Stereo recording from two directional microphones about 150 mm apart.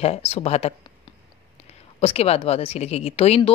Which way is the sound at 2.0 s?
40° left (ahead or behind).